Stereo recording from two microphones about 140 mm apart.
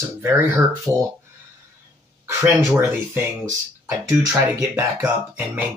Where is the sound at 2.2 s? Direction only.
20° right (ahead or behind).